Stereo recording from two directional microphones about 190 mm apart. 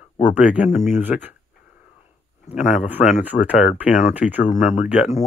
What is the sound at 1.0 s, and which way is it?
Speech, 10° right (ahead or behind).